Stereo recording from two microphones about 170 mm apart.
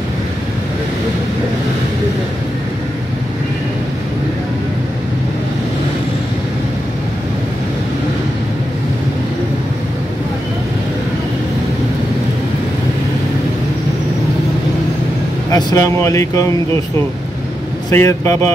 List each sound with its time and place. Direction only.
15.5 s speech: 20° left (ahead or behind)
17.8 s speech: 15° left (ahead or behind)